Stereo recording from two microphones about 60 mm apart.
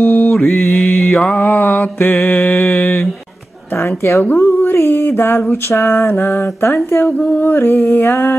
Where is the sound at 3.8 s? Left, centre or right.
Left.